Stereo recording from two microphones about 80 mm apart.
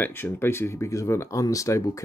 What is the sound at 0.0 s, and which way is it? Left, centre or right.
Speech, left.